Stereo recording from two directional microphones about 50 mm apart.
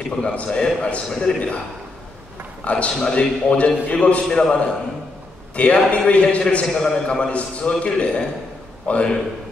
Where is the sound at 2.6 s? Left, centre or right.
Left.